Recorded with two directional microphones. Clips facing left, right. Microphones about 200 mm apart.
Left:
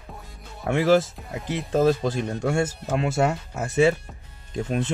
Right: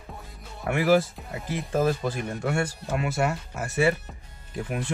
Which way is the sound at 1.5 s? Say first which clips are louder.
Left 4 dB; 25° left (ahead or behind).